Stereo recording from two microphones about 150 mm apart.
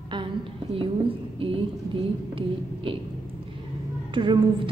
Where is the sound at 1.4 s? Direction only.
35° right (ahead or behind).